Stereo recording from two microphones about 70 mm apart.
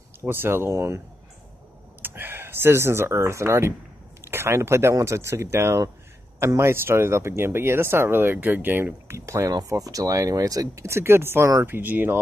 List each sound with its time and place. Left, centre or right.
0.2 s speech: right
2.0 s speech: right
9.7 s speech: right